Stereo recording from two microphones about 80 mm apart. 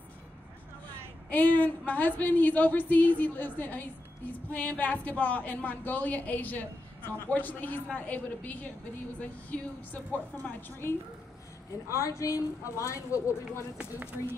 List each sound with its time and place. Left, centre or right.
1.3 s a woman's voice: centre
12.0 s a woman's voice: left
13.7 s speech: right